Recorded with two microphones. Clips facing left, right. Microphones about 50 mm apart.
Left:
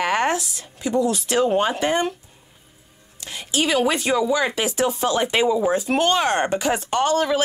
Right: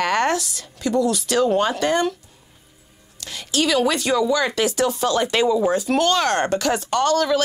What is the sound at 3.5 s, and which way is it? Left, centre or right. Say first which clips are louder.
Speech: right 1 dB; left.